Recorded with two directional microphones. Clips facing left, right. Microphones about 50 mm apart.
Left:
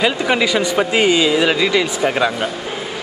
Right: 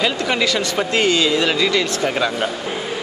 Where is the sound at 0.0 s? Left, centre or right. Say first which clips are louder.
Left 3 dB; centre.